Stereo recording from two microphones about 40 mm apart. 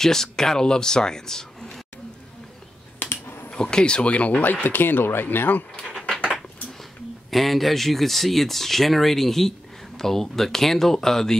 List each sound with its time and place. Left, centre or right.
0.0 s speech: centre
3.0 s a sound: left
3.4 s speech: left
4.4 s speech: left
5.9 s a sound: centre
6.8 s speech: centre